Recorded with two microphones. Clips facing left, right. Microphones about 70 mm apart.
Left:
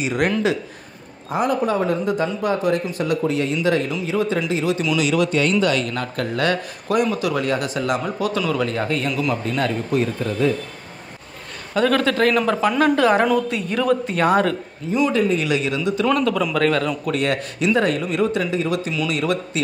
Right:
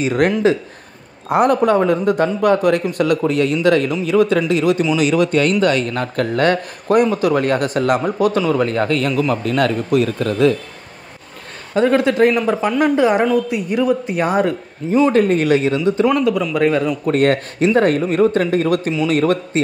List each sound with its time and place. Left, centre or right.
0.0 s speech: right
1.3 s speech: right
4.9 s speech: right
11.7 s a man's voice: right
14.9 s speech: right
16.1 s a woman's voice: centre
17.0 s speech: right